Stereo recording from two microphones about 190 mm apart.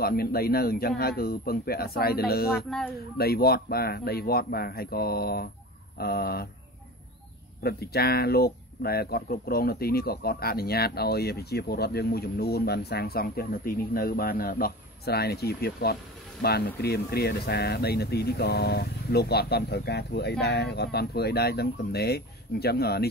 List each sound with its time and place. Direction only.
0.0 s a man's voice: 55° left (ahead or behind)
7.6 s speech: 55° left (ahead or behind)